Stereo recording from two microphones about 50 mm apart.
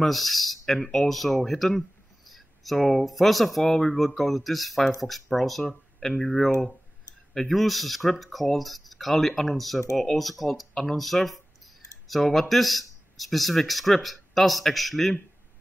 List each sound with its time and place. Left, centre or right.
0.0 s speech: centre